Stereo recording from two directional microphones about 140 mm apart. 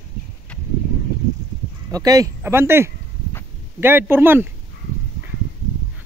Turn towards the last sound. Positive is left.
turn(degrees=-15)  # may be behind; listen again after turning